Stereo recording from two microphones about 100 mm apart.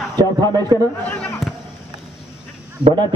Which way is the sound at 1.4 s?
Centre (ahead or behind).